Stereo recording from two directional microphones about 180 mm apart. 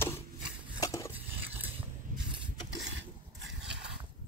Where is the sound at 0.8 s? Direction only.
20° left (ahead or behind).